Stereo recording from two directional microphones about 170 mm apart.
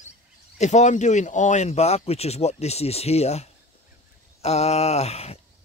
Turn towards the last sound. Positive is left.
turn(degrees=40)  # may be behind; listen again after turning